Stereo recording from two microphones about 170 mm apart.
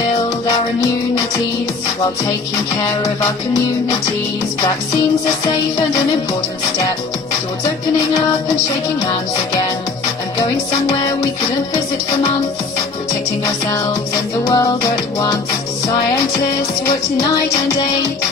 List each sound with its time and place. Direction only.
3.0 s music: 20° left (ahead or behind)
14.4 s music: 20° left (ahead or behind)